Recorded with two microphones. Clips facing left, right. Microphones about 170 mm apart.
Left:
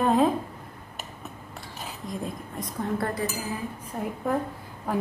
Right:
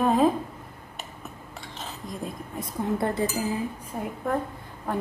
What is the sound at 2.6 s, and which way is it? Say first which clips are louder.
Speech: right 2 dB; 25° right (ahead or behind).